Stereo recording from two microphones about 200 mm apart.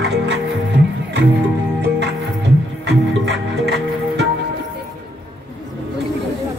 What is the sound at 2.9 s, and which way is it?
Music, 60° right (ahead or behind).